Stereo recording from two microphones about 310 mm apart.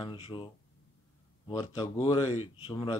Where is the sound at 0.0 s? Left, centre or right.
Centre.